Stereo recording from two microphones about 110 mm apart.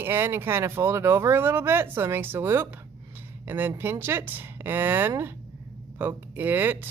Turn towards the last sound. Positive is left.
turn(degrees=-20)  # may be behind; listen again after turning